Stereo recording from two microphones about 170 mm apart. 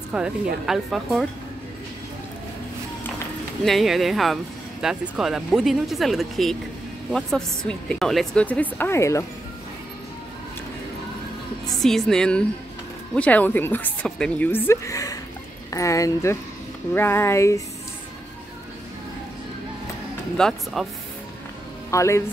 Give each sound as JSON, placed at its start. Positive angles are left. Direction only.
{"t": 0.1, "sound": "a woman's voice", "side_deg": -5}
{"t": 3.6, "sound": "a woman's voice", "side_deg": 0}
{"t": 11.8, "sound": "a woman's voice", "side_deg": 0}
{"t": 20.3, "sound": "a woman's voice", "side_deg": 5}
{"t": 21.9, "sound": "a woman's voice", "side_deg": 15}